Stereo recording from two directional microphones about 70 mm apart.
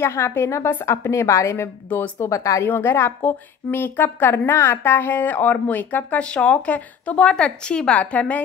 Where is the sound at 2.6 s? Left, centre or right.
Left.